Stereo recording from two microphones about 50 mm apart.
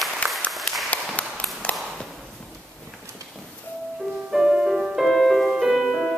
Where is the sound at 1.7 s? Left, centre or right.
Left.